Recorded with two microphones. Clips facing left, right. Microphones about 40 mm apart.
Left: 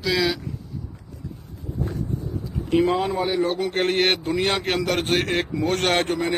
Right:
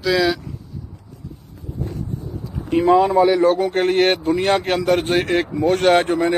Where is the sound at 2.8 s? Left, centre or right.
Right.